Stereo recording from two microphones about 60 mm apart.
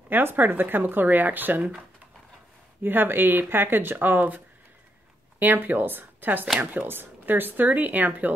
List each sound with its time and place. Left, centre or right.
0.1 s speech: right
2.8 s speech: right
5.4 s speech: right